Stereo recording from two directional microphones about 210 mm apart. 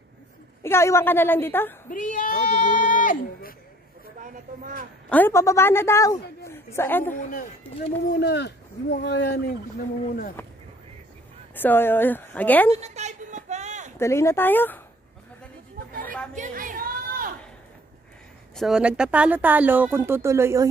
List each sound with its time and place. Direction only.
0.6 s a woman's voice: 15° left (ahead or behind)
1.9 s speech: 40° left (ahead or behind)
4.2 s speech: 40° right (ahead or behind)
5.1 s a woman's voice: 10° left (ahead or behind)
7.2 s speech: 40° left (ahead or behind)
8.2 s speech: 55° left (ahead or behind)
10.4 s a woman's voice: 10° left (ahead or behind)
12.7 s a sound: 30° right (ahead or behind)
13.9 s a woman's voice: 15° left (ahead or behind)
16.0 s a sound: 5° left (ahead or behind)
16.3 s chatter: 40° right (ahead or behind)
18.6 s speech: 5° right (ahead or behind)